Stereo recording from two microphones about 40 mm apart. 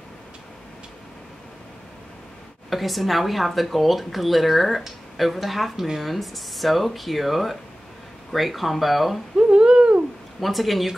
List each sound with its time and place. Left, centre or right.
2.7 s speech: centre
9.4 s a sound: right
10.4 s speech: centre